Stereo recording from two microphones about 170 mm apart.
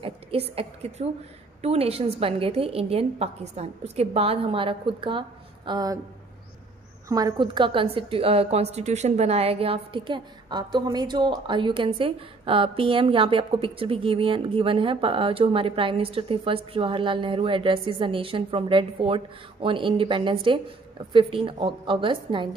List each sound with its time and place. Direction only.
0.0 s a woman's voice: 35° right (ahead or behind)
7.1 s a woman's voice: 20° right (ahead or behind)